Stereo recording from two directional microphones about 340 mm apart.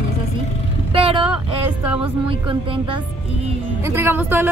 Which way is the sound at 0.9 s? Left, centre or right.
Centre.